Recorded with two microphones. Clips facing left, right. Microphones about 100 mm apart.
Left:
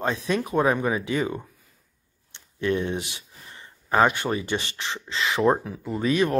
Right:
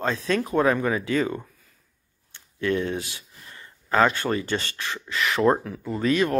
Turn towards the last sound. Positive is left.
turn(degrees=20)  # may be behind; listen again after turning